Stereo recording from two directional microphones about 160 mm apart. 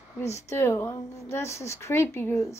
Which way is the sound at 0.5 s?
15° left (ahead or behind).